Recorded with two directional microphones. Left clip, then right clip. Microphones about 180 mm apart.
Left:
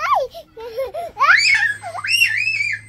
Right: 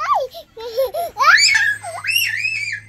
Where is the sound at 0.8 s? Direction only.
40° right (ahead or behind).